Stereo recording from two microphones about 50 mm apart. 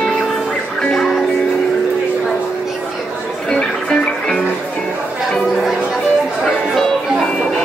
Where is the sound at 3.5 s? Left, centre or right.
Centre.